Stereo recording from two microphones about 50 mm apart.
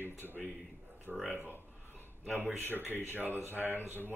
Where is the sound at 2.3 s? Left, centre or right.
Left.